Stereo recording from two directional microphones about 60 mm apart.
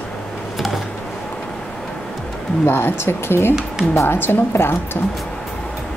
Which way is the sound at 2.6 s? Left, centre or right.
Left.